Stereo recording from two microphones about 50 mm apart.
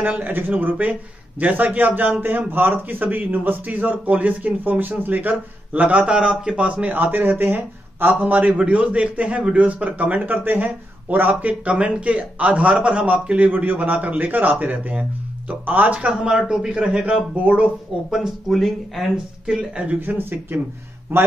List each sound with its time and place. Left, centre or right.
0.0 s speech: right
5.3 s speech: right
8.2 s a man's voice: right
16.1 s a man's voice: centre
17.0 s a man's voice: right
18.5 s speech: centre
19.1 s a man's voice: centre
19.8 s a man's voice: right
20.1 s speech: right